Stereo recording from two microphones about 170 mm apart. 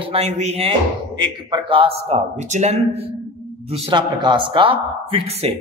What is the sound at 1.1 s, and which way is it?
A man's voice, 25° right (ahead or behind).